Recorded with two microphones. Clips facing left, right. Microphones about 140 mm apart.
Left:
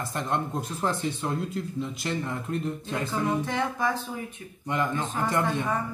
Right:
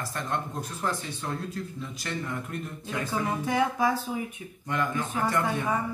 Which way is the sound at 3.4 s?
10° right (ahead or behind).